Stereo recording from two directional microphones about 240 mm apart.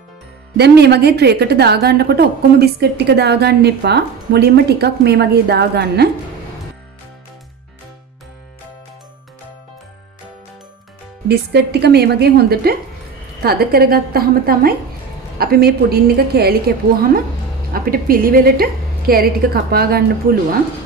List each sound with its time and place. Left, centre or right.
0.6 s a woman's voice: right
11.2 s a woman's voice: right